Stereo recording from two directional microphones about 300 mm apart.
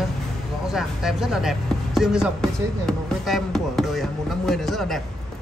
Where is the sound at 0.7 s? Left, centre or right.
Centre.